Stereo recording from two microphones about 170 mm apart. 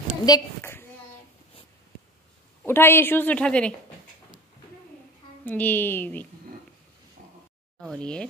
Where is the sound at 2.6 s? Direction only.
10° left (ahead or behind).